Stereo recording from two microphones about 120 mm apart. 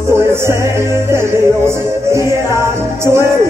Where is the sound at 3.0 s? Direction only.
20° right (ahead or behind).